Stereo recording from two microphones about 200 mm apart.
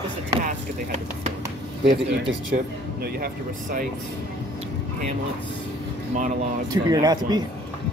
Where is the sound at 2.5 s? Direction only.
50° right (ahead or behind).